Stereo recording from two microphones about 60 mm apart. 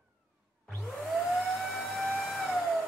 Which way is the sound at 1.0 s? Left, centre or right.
Centre.